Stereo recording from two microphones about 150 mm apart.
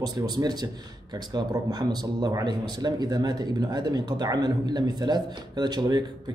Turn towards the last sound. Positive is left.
turn(degrees=-30)  # may be behind; listen again after turning